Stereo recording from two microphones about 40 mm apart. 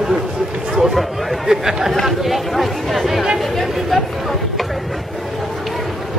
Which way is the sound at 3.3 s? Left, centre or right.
Centre.